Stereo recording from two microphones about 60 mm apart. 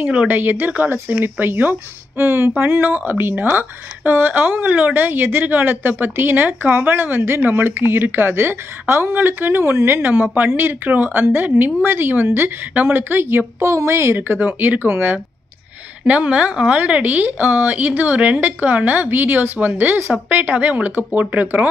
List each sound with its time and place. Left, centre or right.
0.0 s a woman's voice: right
0.4 s speech: right
10.0 s speech: right
13.6 s a woman's voice: right
14.1 s speech: right
16.1 s a woman's voice: right